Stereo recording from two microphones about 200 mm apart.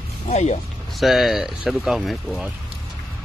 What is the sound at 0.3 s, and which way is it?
Speech, 35° left (ahead or behind).